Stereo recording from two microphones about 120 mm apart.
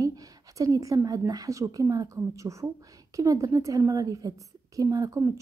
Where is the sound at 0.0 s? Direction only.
30° right (ahead or behind).